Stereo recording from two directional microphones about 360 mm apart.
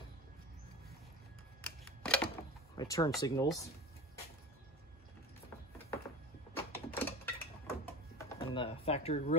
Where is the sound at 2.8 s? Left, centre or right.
Centre.